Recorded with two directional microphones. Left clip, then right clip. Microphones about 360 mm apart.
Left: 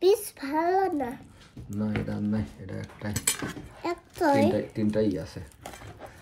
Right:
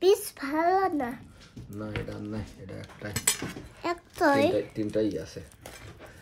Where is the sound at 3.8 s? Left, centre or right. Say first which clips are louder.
Right 1 dB; right.